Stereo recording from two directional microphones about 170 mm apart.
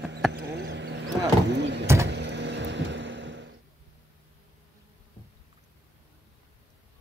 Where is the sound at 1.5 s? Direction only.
90° right.